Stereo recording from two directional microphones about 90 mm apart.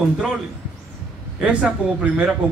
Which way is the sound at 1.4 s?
10° right (ahead or behind).